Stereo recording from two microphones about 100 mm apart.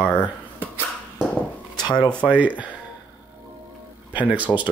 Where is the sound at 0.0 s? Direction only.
15° left (ahead or behind).